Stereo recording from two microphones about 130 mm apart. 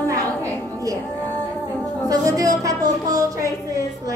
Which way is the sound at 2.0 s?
25° right (ahead or behind).